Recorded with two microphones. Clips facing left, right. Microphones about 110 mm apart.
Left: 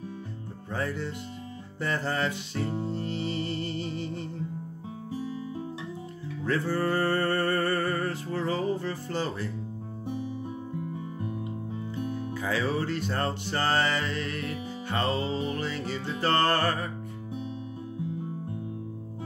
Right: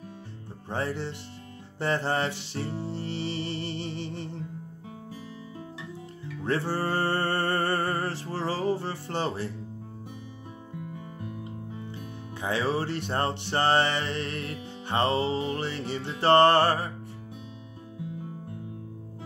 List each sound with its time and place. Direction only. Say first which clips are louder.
0.7 s music: right 1 dB; 25° right (ahead or behind)
6.4 s music: left 1 dB; 30° right (ahead or behind)
12.4 s music: right 2 dB; 25° right (ahead or behind)